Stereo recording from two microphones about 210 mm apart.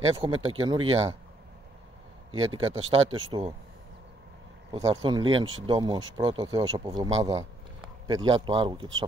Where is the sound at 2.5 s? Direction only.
25° right (ahead or behind).